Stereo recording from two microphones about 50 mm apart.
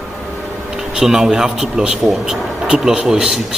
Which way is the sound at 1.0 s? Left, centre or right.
Centre.